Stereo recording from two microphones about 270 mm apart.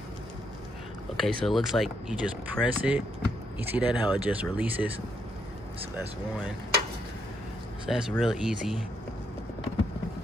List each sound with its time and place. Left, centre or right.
1.1 s speech: centre
3.9 s speech: centre
4.3 s speech: centre
7.9 s speech: centre